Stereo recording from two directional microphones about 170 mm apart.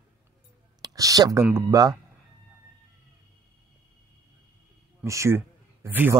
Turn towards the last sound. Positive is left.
turn(degrees=-15)  # may be behind; listen again after turning